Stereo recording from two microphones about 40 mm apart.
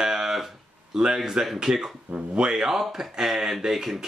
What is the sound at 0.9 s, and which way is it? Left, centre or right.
Speech, centre.